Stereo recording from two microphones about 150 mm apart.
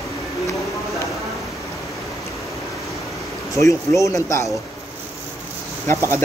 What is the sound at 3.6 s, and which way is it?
Speech, 20° left (ahead or behind).